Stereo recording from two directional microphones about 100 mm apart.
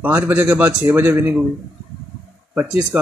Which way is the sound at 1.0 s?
20° right (ahead or behind).